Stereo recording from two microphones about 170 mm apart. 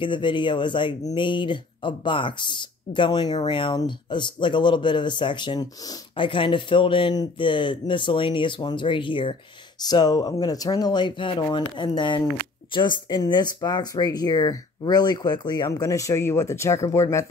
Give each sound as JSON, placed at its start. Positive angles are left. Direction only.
{"t": 0.0, "sound": "speech", "side_deg": 30}